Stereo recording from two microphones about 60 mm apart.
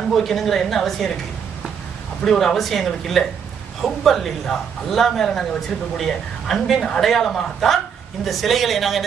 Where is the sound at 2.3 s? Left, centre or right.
Centre.